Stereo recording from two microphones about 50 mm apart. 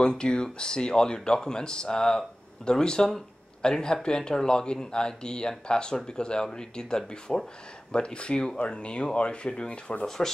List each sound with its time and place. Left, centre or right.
0.0 s speech: centre
10.0 s speech: centre